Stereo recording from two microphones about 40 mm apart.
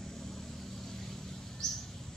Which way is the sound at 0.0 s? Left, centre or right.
Centre.